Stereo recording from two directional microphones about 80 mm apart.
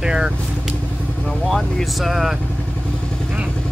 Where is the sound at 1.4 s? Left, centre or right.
Centre.